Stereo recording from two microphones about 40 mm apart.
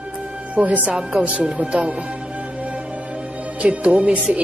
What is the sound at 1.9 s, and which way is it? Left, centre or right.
Music, right.